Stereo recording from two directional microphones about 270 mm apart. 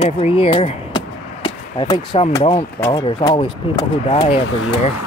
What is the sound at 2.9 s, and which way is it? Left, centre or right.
Speech, centre.